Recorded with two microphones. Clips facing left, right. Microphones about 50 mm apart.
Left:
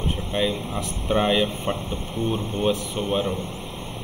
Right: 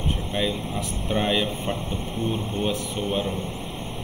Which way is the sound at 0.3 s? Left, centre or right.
Centre.